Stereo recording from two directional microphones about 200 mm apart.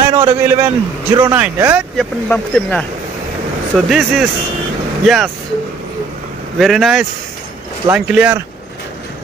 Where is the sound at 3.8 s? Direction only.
Centre (ahead or behind).